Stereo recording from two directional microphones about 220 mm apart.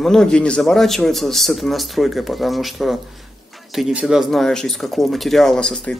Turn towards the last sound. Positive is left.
turn(degrees=5)  # may be behind; listen again after turning